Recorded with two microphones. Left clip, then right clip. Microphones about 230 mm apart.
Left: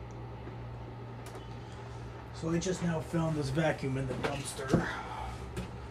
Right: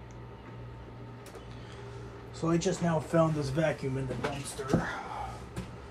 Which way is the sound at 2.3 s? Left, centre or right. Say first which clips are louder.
Right 4 dB; centre.